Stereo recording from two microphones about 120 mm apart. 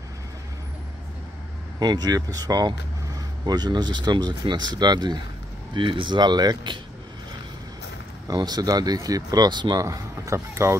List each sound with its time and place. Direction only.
1.8 s speech: 35° right (ahead or behind)
8.3 s speech: 35° right (ahead or behind)